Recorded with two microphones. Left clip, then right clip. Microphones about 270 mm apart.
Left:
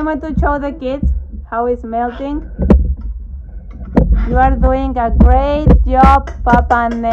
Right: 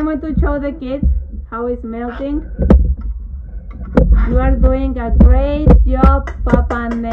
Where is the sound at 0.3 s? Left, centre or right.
Left.